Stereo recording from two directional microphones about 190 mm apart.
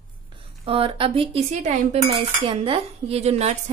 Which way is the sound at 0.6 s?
30° right (ahead or behind).